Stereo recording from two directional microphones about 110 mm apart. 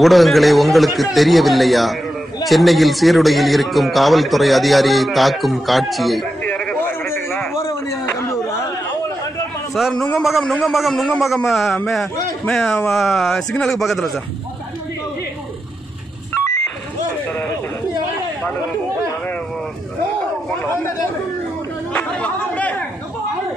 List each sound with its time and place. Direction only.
0.0 s speech: centre (ahead or behind)
6.4 s a sound: 10° left (ahead or behind)
9.8 s speech: 5° right (ahead or behind)
21.9 s chatter: 10° left (ahead or behind)